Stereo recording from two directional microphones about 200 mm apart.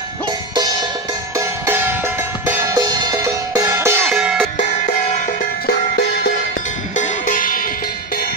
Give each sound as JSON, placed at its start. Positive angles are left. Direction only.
{"t": 1.7, "sound": "music", "side_deg": -10}
{"t": 4.1, "sound": "cowbell", "side_deg": -5}
{"t": 7.0, "sound": "music", "side_deg": 40}